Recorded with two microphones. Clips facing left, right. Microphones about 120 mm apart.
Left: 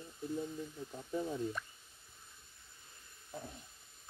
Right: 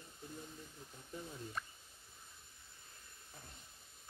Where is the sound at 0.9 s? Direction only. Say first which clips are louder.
Left 11 dB; 90° left.